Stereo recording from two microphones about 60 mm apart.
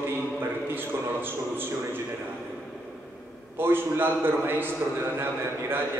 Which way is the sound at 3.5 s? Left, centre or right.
Right.